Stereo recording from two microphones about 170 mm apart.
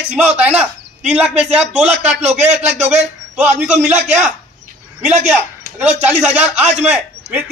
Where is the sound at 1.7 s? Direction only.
40° right (ahead or behind).